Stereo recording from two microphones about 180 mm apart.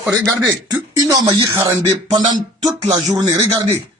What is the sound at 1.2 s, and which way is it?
A man's voice, 20° right (ahead or behind).